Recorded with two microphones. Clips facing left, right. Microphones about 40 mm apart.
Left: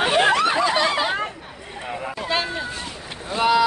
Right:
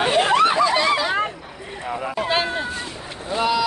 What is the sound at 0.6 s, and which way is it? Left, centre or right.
Snicker, left.